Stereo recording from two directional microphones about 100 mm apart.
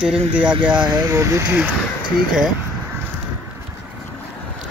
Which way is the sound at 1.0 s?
25° right (ahead or behind).